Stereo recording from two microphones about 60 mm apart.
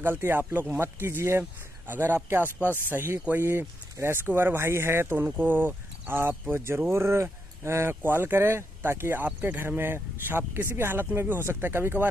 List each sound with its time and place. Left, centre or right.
0.0 s speech: right
5.1 s speech: right
9.2 s speech: right